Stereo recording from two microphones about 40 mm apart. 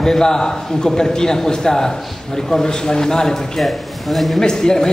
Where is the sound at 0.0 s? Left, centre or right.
Centre.